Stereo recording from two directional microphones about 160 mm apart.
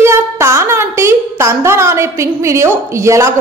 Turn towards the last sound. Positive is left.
turn(degrees=-20)  # may be behind; listen again after turning